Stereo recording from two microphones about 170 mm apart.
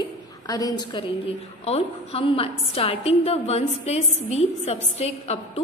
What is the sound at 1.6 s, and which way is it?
A woman's voice, 35° left (ahead or behind).